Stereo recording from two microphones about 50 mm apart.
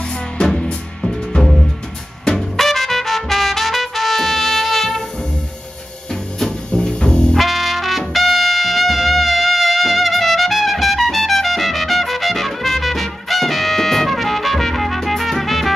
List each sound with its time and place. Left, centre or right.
0.1 s music: centre
6.4 s music: centre
7.3 s brass instrument: centre
8.1 s music: centre